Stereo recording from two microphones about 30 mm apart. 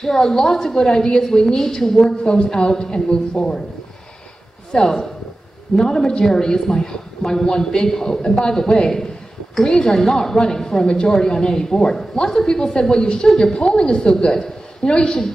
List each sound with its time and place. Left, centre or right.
0.0 s a woman's voice: centre
2.2 s speech: left
4.8 s a woman's voice: centre; by 15.1 s left